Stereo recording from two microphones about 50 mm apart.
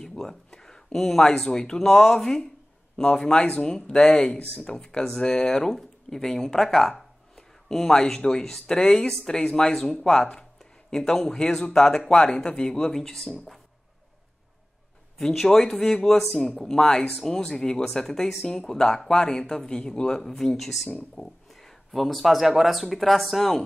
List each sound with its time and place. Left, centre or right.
0.0 s speech: centre
15.1 s speech: centre